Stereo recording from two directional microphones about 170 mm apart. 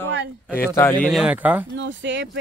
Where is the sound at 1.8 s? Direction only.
90° right.